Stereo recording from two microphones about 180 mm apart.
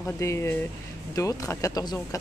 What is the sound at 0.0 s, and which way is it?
Speech, 15° left (ahead or behind).